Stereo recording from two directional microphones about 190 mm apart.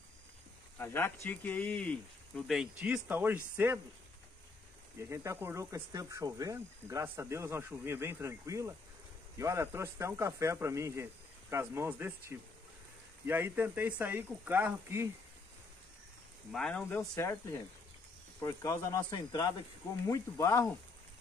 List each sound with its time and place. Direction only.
0.7 s speech: 10° left (ahead or behind); by 3.8 s 10° right (ahead or behind)
4.9 s speech: 15° right (ahead or behind)
16.5 s speech: 5° left (ahead or behind)
17.1 s speech: 15° left (ahead or behind)